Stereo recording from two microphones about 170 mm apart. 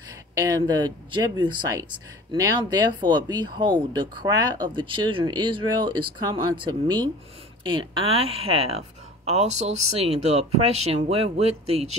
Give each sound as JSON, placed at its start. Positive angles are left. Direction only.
{"t": 0.3, "sound": "speech", "side_deg": -20}